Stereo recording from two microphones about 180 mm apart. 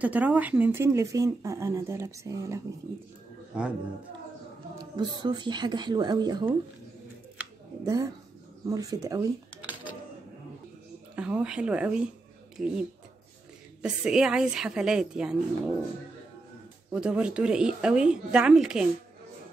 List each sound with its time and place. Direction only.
0.0 s speech: 10° right (ahead or behind)
3.5 s speech: 5° right (ahead or behind)
4.9 s speech: 25° right (ahead or behind)
7.8 s speech: 20° right (ahead or behind)
11.1 s speech: 5° right (ahead or behind)
13.8 s speech: 5° right (ahead or behind)
16.9 s speech: 5° right (ahead or behind)